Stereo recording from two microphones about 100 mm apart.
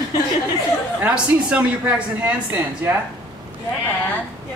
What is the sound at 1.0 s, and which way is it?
Speech, 10° right (ahead or behind).